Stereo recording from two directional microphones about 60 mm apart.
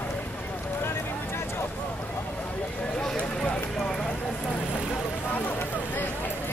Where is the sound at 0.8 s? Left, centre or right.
Left.